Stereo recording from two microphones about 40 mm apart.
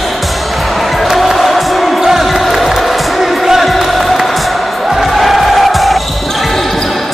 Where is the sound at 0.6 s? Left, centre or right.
Centre.